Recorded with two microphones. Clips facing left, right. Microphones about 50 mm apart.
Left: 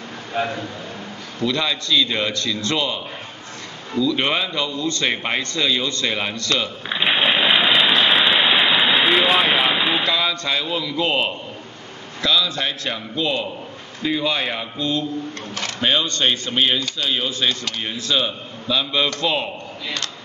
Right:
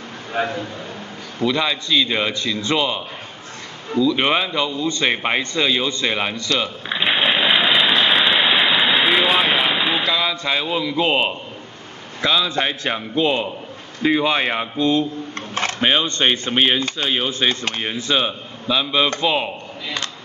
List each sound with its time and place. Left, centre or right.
1.4 s a man's voice: centre
6.9 s a sound: centre
10.3 s a man's voice: centre